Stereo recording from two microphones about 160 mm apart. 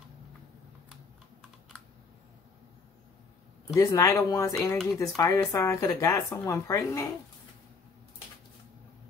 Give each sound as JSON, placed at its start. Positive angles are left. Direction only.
{"t": 3.7, "sound": "speech", "side_deg": 20}